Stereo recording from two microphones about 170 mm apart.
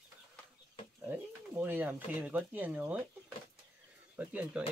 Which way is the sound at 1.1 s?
10° right (ahead or behind).